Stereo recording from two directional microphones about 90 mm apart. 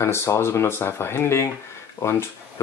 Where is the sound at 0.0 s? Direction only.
30° left (ahead or behind).